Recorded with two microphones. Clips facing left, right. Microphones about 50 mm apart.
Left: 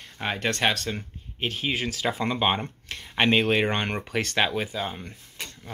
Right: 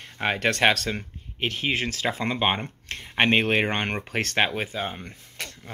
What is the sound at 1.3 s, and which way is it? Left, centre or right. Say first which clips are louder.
Speech: right 2 dB; right.